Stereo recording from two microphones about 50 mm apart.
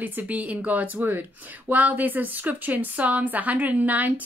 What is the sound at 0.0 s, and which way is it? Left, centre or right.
A woman's voice, right.